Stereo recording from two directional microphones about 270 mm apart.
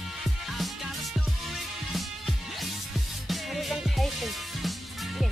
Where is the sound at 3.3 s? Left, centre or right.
Centre.